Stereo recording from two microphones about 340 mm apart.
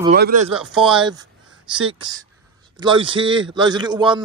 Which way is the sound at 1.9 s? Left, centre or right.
Centre.